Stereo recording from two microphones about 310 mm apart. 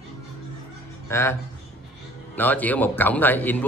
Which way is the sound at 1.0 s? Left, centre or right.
Centre.